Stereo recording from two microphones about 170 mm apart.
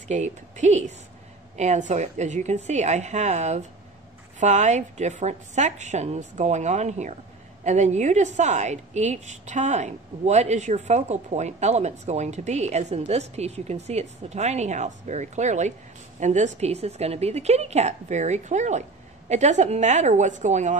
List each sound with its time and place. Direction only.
0.1 s a woman's voice: 45° right (ahead or behind)